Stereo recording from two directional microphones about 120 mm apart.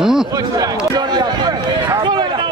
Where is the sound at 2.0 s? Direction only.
40° right (ahead or behind).